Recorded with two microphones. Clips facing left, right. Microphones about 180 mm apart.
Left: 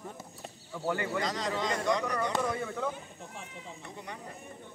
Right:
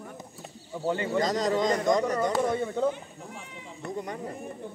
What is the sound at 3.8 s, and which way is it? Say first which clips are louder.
Speech: right 13 dB; 45° right (ahead or behind).